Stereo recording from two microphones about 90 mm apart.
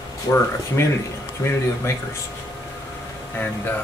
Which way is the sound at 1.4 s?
30° left (ahead or behind).